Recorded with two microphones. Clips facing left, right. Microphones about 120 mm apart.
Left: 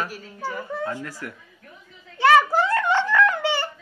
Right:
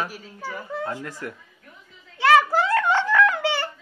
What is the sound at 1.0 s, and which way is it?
Speech, 20° right (ahead or behind).